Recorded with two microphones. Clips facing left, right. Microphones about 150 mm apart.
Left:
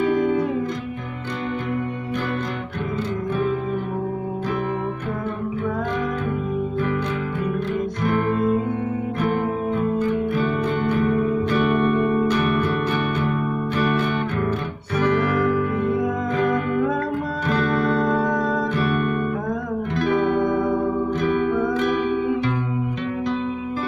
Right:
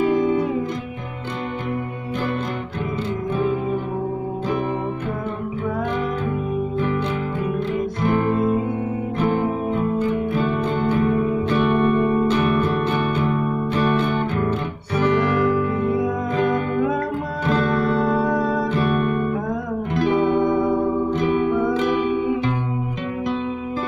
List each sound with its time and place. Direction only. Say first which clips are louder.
9.9 s music: even; 30° right (ahead or behind)
18.0 s music: right 1 dB; 5° right (ahead or behind)
18.7 s music: right 2 dB; 25° right (ahead or behind)